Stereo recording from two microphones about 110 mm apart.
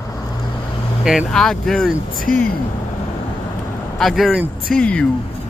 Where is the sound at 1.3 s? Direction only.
5° left (ahead or behind).